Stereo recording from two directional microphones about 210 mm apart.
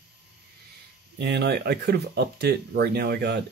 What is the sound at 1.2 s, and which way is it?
Speech, 55° right (ahead or behind).